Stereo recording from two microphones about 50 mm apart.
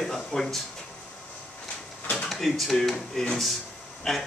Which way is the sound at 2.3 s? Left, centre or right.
Centre.